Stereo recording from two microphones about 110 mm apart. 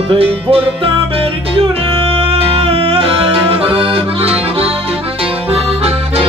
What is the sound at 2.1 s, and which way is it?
Music, 55° right (ahead or behind).